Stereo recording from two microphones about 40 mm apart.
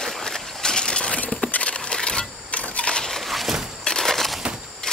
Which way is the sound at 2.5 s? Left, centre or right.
Left.